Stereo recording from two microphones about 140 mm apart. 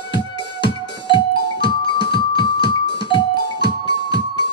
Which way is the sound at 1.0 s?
35° left (ahead or behind).